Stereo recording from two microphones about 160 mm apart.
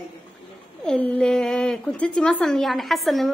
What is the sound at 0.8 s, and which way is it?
Speech, 5° left (ahead or behind).